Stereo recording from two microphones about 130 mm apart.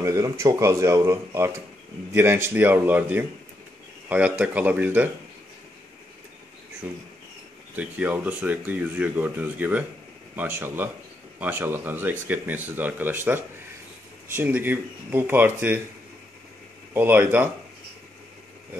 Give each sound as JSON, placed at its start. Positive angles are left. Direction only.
{"t": 0.0, "sound": "speech", "side_deg": -20}
{"t": 6.8, "sound": "speech", "side_deg": -15}
{"t": 16.9, "sound": "speech", "side_deg": -15}